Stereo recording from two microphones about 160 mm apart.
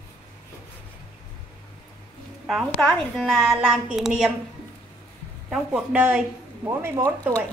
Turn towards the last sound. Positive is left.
turn(degrees=-15)  # may be behind; listen again after turning